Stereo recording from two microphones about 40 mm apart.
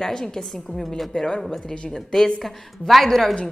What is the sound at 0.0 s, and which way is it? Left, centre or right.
Speech, centre.